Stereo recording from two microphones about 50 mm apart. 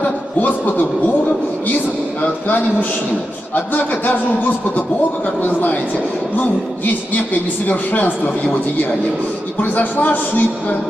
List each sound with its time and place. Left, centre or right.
0.0 s a sound: left
2.2 s speech: left
7.6 s speech: left
9.6 s speech: left